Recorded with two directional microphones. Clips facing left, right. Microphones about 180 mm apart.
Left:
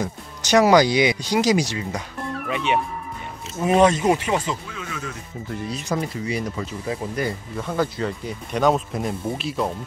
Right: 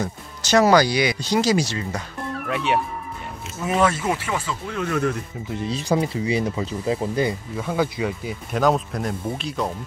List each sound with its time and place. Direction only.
0.0 s speech: 15° left (ahead or behind)
2.1 s music: centre (ahead or behind)
3.5 s speech: 25° left (ahead or behind)
4.6 s speech: 55° right (ahead or behind)
5.5 s speech: 20° right (ahead or behind)
7.5 s speech: 10° right (ahead or behind)